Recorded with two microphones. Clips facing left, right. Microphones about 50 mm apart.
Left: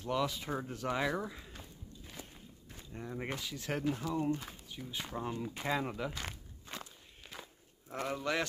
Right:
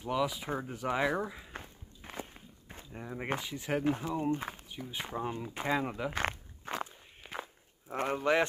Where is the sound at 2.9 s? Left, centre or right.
Centre.